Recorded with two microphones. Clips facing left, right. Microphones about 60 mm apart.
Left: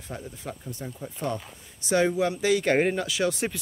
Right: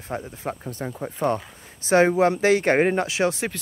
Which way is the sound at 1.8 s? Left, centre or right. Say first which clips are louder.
Right 6 dB; right.